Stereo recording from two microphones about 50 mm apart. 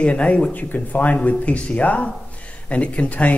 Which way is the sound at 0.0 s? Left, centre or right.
Left.